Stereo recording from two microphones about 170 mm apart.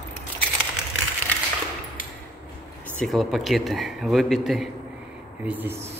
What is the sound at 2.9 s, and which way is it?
A man's voice, centre (ahead or behind).